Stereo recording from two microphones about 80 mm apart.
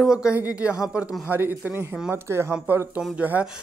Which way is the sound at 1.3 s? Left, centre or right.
Right.